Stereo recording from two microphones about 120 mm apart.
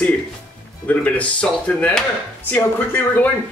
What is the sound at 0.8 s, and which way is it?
Speech, 10° left (ahead or behind).